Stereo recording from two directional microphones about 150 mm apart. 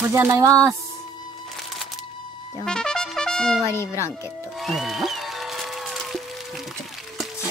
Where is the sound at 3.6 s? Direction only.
20° left (ahead or behind).